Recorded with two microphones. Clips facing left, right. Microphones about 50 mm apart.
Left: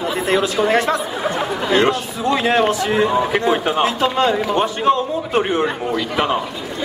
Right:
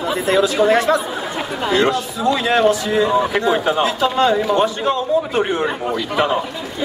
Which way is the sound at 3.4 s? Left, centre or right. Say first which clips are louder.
Even; left.